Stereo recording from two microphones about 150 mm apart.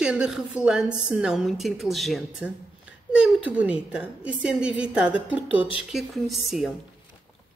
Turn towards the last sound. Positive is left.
turn(degrees=0)  # may be behind; listen again after turning